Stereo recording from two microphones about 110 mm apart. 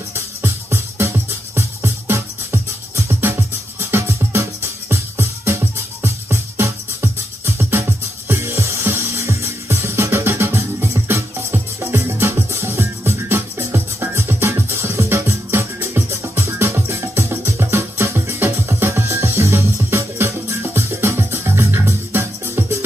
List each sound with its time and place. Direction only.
0.1 s music: 25° right (ahead or behind)